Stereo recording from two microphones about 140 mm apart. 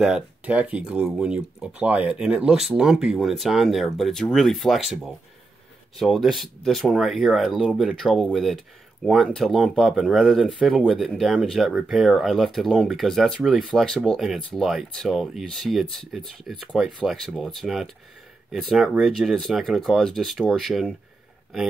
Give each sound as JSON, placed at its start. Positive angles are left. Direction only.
{"t": 0.0, "sound": "speech", "side_deg": -5}